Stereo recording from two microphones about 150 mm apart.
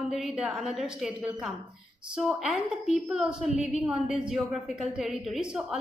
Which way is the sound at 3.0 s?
5° right (ahead or behind).